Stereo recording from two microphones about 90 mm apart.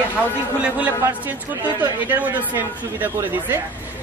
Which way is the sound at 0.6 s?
15° right (ahead or behind).